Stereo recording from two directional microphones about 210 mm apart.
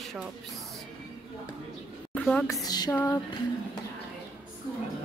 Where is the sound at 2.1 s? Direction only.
5° left (ahead or behind).